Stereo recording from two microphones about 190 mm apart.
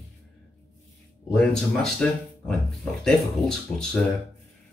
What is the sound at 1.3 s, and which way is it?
Speech, 5° left (ahead or behind).